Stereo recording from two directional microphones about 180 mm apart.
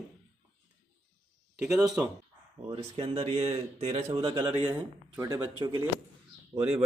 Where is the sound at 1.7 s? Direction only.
Centre (ahead or behind).